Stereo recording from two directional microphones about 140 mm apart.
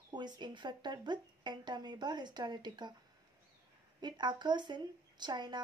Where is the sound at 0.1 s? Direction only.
30° right (ahead or behind).